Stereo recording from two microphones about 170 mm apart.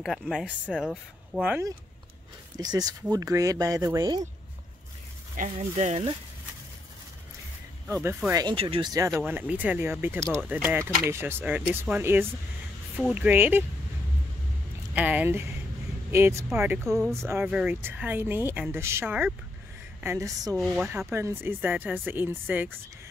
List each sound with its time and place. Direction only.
0.0 s speech: centre (ahead or behind)
2.5 s speech: 25° right (ahead or behind)
5.3 s speech: 45° right (ahead or behind)
7.9 s speech: 15° right (ahead or behind)
9.1 s speech: 10° right (ahead or behind)
15.0 s speech: 10° right (ahead or behind)
20.5 s speech: 5° right (ahead or behind)